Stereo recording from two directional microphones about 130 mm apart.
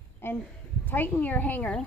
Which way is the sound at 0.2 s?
20° left (ahead or behind).